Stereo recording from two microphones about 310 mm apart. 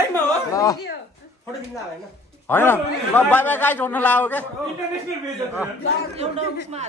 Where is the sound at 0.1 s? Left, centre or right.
Centre.